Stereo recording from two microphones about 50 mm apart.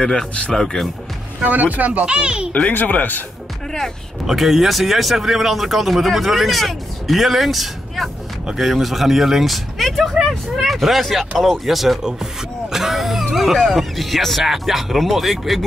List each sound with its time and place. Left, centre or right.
0.0 s speech: centre
1.4 s speech: right
2.0 s speech: centre
2.5 s speech: left
4.3 s speech: centre